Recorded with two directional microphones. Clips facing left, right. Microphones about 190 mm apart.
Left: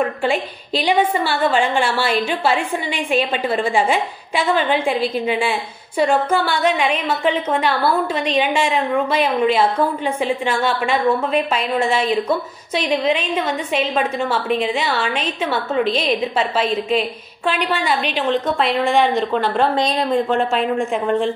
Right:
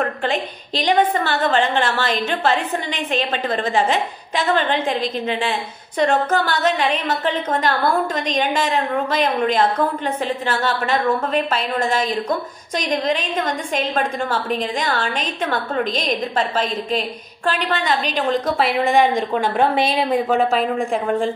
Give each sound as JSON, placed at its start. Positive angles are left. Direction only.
{"t": 0.0, "sound": "a woman's voice", "side_deg": 10}
{"t": 18.0, "sound": "a woman's voice", "side_deg": -40}
{"t": 18.9, "sound": "a woman's voice", "side_deg": -10}